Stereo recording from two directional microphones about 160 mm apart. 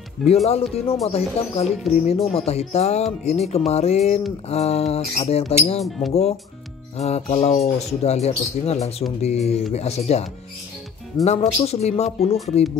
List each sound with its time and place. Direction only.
0.2 s speech: 40° left (ahead or behind)
7.0 s speech: 40° left (ahead or behind)
11.2 s speech: 40° left (ahead or behind)